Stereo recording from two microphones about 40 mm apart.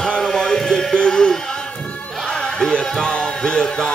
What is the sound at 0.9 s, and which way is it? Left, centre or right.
Music, centre.